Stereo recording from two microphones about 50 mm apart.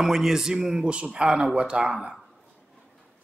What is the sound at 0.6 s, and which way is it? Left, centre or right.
Speech, centre.